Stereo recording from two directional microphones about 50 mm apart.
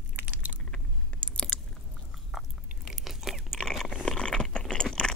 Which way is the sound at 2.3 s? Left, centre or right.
Centre.